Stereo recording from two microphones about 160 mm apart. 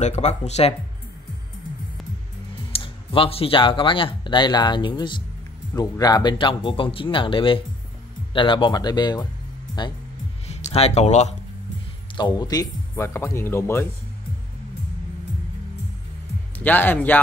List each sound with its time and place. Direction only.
0.0 s speech: 45° left (ahead or behind)
2.7 s speech: 35° left (ahead or behind)
10.5 s speech: 40° left (ahead or behind)
12.2 s speech: 25° left (ahead or behind)
16.5 s speech: 10° left (ahead or behind)